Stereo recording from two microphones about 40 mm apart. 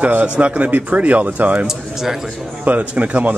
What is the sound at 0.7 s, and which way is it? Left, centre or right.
Speech, right.